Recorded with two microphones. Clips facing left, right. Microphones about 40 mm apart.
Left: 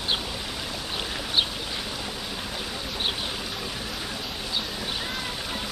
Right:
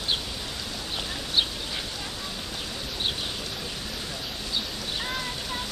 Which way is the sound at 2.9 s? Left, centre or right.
Centre.